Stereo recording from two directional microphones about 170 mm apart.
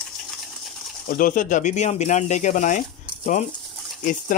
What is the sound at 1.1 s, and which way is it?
Speech, 55° left (ahead or behind).